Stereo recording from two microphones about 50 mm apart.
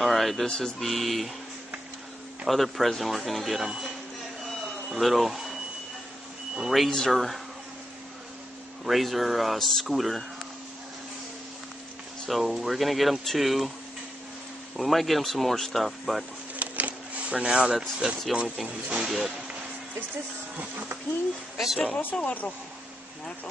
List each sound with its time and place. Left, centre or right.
0.0 s speech: centre
0.5 s speech: centre
0.7 s speech: centre
2.4 s speech: centre
4.5 s printer: centre
6.7 s speech: centre
8.8 s speech: centre
12.3 s speech: centre
14.8 s speech: centre
16.5 s a sound: right
17.3 s speech: centre
21.5 s speech: centre
22.2 s speech: left